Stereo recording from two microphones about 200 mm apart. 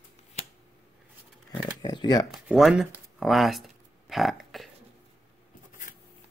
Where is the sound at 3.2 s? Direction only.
Centre (ahead or behind).